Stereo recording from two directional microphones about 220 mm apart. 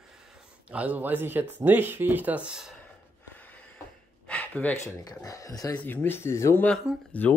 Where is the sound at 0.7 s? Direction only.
5° right (ahead or behind).